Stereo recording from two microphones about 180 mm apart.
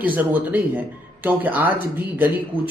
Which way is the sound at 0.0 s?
10° right (ahead or behind).